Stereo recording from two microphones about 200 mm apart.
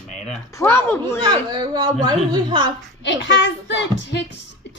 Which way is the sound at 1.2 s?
25° right (ahead or behind).